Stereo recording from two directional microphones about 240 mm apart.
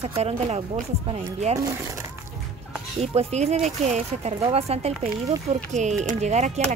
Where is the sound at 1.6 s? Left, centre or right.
Centre.